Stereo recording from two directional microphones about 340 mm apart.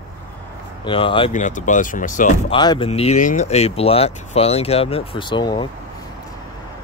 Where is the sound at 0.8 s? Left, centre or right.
Centre.